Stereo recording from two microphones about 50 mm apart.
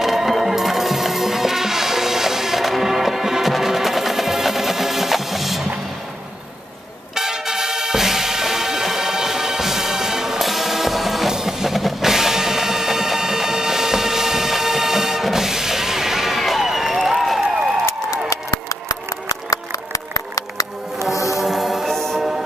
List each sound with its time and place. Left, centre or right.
0.0 s music: centre
7.2 s music: centre
18.3 s engine: left
21.1 s music: left
21.4 s music: centre
21.9 s music: centre